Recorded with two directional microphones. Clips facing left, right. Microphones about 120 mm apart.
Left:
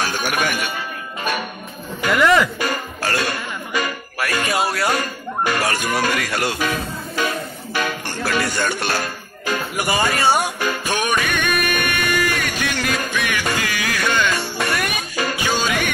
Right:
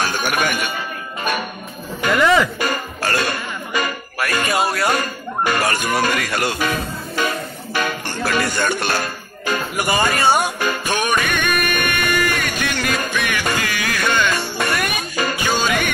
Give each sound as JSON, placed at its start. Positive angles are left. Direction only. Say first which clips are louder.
{"t": 0.0, "sound": "a sound", "louder": "right 1 dB", "side_deg": -50}
{"t": 2.1, "sound": "speech", "louder": "even", "side_deg": 0}
{"t": 2.6, "sound": "music", "louder": "right 1 dB", "side_deg": -50}
{"t": 4.2, "sound": "speech", "louder": "right 1 dB", "side_deg": -50}
{"t": 7.7, "sound": "music", "louder": "right 1 dB", "side_deg": -50}